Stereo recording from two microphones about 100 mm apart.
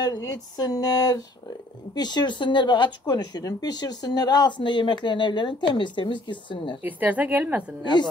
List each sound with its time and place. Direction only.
0.0 s a sound: 40° left (ahead or behind)
2.0 s speech: 45° left (ahead or behind)
6.8 s a woman's voice: 20° right (ahead or behind)
7.8 s speech: 50° left (ahead or behind)